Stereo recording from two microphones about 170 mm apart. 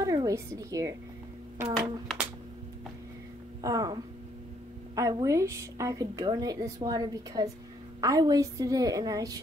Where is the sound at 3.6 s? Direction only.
20° right (ahead or behind).